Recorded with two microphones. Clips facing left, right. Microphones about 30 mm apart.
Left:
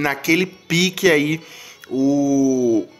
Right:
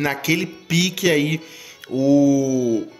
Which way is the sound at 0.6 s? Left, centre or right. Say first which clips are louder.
Left 1 dB; centre.